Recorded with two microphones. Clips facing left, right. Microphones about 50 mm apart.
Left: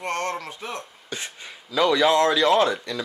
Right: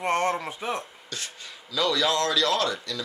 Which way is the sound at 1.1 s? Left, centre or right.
Left.